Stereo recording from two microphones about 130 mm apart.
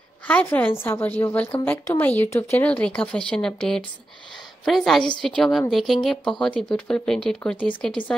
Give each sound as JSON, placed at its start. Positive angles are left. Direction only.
{"t": 0.3, "sound": "a woman's voice", "side_deg": 10}
{"t": 2.6, "sound": "a woman's voice", "side_deg": 10}